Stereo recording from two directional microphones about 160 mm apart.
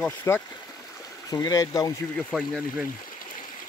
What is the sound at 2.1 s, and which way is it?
Speech, 5° left (ahead or behind).